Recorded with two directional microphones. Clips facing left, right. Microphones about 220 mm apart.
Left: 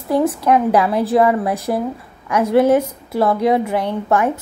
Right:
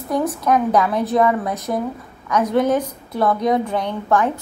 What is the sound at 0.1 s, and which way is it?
A woman's voice, 30° left (ahead or behind).